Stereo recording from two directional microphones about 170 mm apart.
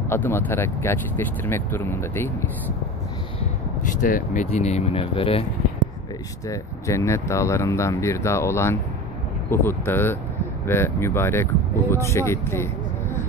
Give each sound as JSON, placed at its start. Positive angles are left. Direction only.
{"t": 0.1, "sound": "speech", "side_deg": 10}
{"t": 4.0, "sound": "speech", "side_deg": 50}
{"t": 6.5, "sound": "speech", "side_deg": 15}